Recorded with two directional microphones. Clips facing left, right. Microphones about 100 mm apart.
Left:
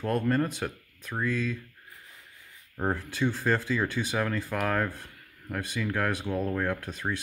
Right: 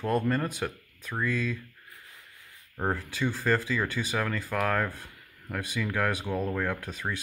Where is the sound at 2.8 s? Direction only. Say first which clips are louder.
Left 1 dB; centre (ahead or behind).